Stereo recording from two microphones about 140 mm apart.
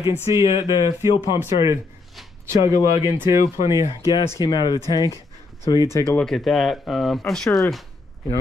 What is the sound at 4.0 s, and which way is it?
Speech, 25° left (ahead or behind).